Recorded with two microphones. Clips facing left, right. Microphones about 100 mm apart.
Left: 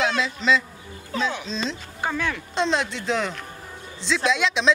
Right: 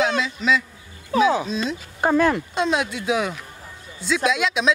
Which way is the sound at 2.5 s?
5° right (ahead or behind).